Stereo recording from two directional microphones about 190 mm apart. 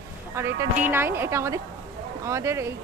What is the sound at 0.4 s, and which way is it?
Speech, 10° right (ahead or behind).